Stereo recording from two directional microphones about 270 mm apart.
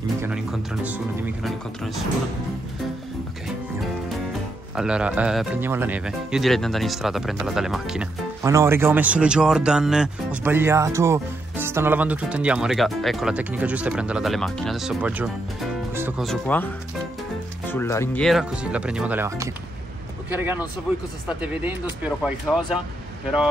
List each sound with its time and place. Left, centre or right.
0.2 s speech: centre
4.7 s speech: centre
22.5 s speech: centre